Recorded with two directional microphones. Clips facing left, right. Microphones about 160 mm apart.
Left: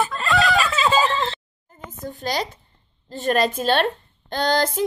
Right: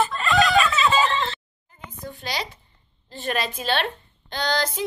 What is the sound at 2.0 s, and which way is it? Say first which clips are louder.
A woman's voice: left 5 dB; 45° left (ahead or behind).